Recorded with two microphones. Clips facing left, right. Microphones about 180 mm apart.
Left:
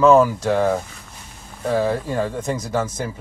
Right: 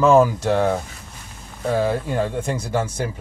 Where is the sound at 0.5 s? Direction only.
Centre (ahead or behind).